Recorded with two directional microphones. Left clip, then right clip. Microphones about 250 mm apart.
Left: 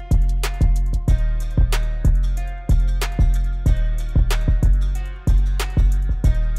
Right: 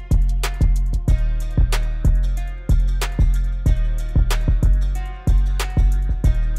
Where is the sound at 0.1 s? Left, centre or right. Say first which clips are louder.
Right 1 dB; centre.